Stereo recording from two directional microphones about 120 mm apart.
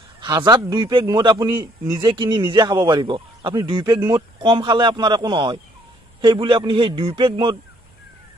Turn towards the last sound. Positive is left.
turn(degrees=-45)  # may be behind; listen again after turning